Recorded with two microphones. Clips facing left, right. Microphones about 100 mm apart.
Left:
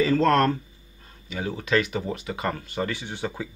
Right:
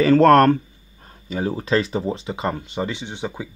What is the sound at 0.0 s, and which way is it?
Speech, 65° right (ahead or behind).